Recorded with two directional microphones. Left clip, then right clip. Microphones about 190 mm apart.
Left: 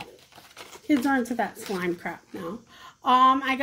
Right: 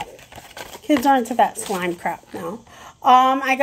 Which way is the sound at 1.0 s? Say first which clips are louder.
Right 9 dB; 15° left (ahead or behind).